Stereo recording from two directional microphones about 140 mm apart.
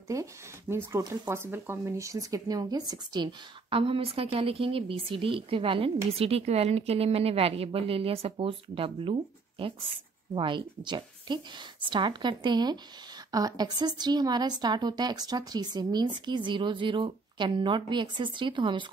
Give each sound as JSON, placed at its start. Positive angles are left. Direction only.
{"t": 0.1, "sound": "speech", "side_deg": -20}